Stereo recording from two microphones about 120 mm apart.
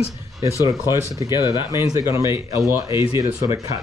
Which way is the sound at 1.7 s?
25° right (ahead or behind).